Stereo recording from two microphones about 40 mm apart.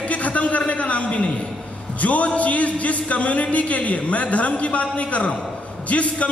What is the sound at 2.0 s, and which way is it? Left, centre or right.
A man's voice, left.